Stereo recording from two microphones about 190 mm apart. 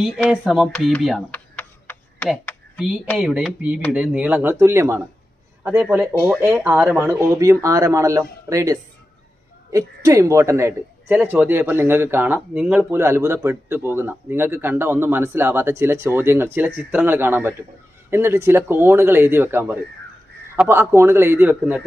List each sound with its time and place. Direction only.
0.3 s a sound: 5° right (ahead or behind)
3.2 s speech: 5° right (ahead or behind)
6.1 s speech: centre (ahead or behind)
6.4 s speech: 10° right (ahead or behind)